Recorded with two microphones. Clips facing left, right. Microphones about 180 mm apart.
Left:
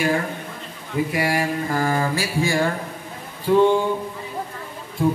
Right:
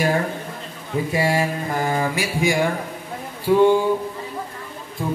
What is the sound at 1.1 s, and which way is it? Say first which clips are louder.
Speech: right 3 dB; 25° right (ahead or behind).